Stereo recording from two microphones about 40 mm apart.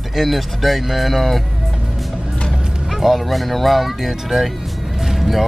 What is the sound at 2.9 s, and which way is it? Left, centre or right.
Speech, centre.